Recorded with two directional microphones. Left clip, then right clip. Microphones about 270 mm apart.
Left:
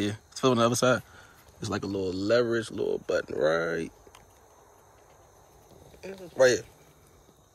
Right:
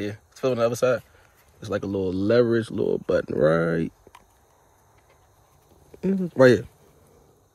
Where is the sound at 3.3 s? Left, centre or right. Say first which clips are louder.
Right 5 dB; right.